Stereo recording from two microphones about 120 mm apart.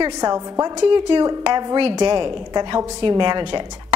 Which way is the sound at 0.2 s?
30° right (ahead or behind).